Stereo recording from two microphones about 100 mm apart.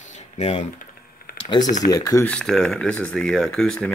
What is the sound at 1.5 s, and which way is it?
Speech, 40° left (ahead or behind).